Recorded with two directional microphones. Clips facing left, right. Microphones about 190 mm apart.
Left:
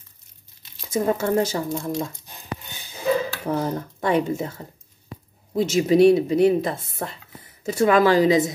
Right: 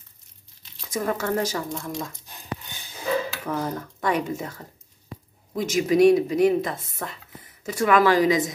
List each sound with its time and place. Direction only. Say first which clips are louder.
0.9 s a woman's voice: left 4 dB; 25° left (ahead or behind)
3.4 s a woman's voice: left 3 dB; 30° left (ahead or behind)